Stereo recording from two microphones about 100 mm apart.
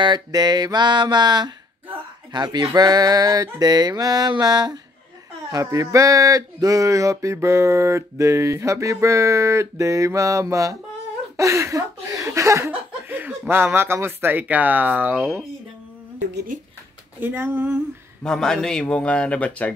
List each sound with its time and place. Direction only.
0.0 s a sound: 45° right (ahead or behind); by 12.7 s 30° right (ahead or behind)
13.1 s speech: 20° right (ahead or behind)
17.2 s speech: 20° right (ahead or behind)
18.2 s a man's voice: 5° left (ahead or behind)